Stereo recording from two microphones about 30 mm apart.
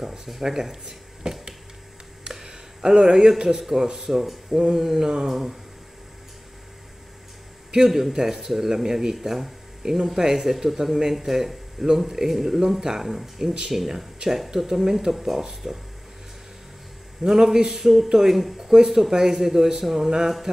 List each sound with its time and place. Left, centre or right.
0.0 s speech: centre
2.2 s a sound: right
3.8 s speech: centre
4.5 s a sound: right
4.7 s speech: centre
7.7 s speech: centre
15.6 s speech: centre
17.3 s a man's voice: centre